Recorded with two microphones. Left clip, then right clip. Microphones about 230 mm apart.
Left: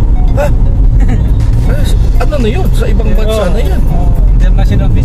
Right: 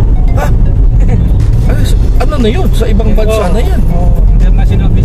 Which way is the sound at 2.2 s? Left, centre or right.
Centre.